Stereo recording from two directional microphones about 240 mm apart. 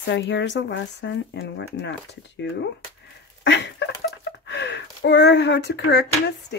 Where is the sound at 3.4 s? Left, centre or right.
Left.